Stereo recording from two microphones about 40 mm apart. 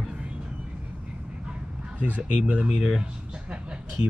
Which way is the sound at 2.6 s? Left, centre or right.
Centre.